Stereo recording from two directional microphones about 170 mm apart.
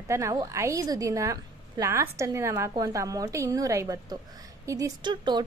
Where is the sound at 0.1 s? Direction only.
20° right (ahead or behind).